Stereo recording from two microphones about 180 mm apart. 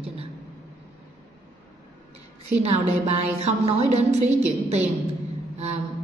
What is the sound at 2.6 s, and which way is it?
Speech, 35° right (ahead or behind).